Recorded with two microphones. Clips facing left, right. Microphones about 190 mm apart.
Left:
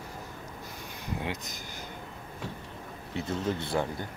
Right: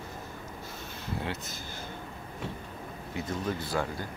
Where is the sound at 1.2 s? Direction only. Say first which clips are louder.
Even; 15° left (ahead or behind).